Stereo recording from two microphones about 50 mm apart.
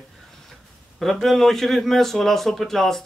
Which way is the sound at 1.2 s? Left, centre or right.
Centre.